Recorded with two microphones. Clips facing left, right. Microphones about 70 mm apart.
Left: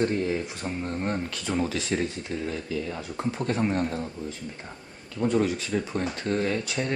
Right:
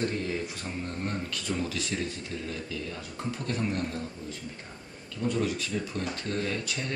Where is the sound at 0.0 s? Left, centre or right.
Left.